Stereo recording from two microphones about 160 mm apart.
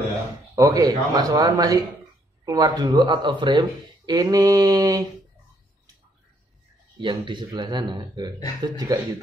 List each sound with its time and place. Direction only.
0.6 s speech: 25° right (ahead or behind)
7.0 s speech: 30° right (ahead or behind)